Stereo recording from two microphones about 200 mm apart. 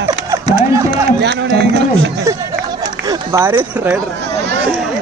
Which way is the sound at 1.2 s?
60° right (ahead or behind).